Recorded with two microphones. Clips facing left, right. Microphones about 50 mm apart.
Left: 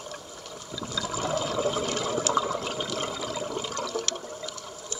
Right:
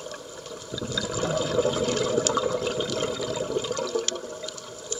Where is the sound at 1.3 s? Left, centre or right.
Centre.